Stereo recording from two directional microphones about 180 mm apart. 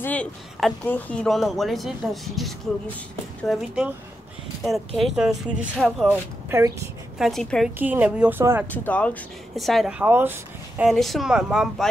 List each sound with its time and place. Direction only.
0.0 s speech: 5° left (ahead or behind)
6.5 s speech: 15° right (ahead or behind)
7.2 s speech: centre (ahead or behind)
8.6 s speech: 10° left (ahead or behind); by 10.9 s 10° right (ahead or behind)
10.9 s speech: centre (ahead or behind)